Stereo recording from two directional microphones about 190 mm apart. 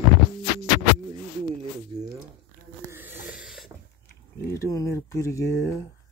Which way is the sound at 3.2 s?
5° right (ahead or behind).